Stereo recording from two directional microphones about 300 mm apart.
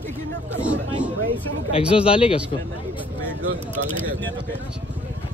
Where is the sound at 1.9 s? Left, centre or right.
Centre.